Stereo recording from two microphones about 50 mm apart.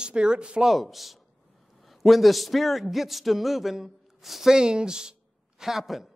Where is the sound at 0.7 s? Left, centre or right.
Centre.